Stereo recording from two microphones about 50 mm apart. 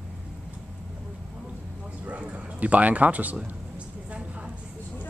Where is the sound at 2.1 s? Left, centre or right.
Right.